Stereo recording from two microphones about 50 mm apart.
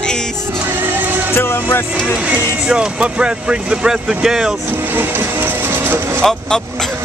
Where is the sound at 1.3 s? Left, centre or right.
Left.